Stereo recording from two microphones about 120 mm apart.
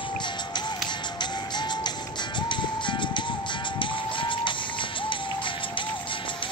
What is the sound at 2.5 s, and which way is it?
Music, 40° left (ahead or behind).